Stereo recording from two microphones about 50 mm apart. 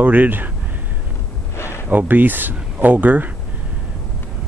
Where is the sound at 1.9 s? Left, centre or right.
Right.